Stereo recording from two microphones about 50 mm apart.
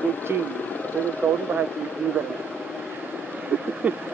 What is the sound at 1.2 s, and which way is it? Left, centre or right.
Speech, right.